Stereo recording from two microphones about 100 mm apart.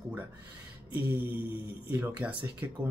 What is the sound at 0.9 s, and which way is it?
Mantra, 55° left (ahead or behind).